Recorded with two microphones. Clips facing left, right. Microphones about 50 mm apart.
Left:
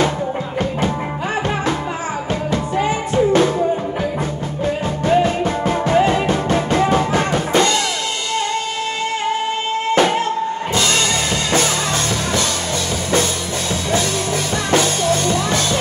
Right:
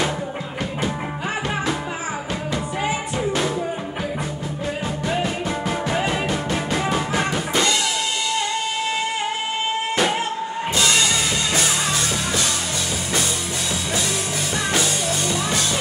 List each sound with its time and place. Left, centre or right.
0.6 s music: left
2.5 s music: left
4.6 s music: left
9.9 s music: left
14.7 s music: left